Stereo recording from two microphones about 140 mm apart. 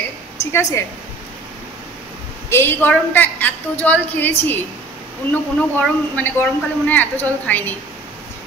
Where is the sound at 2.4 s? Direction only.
15° left (ahead or behind).